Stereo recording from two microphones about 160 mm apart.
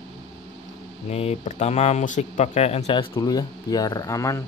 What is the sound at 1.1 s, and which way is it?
Speech, 40° left (ahead or behind).